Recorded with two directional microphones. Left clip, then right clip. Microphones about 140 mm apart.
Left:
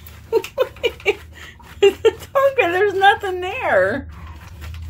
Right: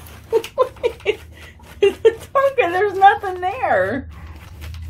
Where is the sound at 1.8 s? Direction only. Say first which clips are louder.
Even; 45° left (ahead or behind); by 3.6 s 60° left (ahead or behind).